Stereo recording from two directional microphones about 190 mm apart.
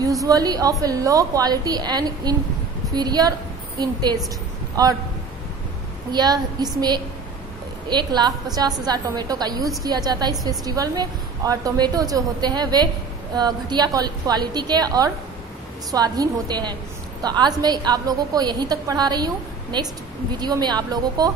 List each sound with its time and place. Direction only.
0.0 s a woman's voice: 15° right (ahead or behind)
6.1 s a woman's voice: 20° right (ahead or behind)